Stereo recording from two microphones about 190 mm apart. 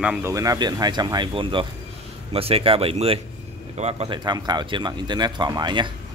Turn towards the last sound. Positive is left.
turn(degrees=-25)  # may be behind; listen again after turning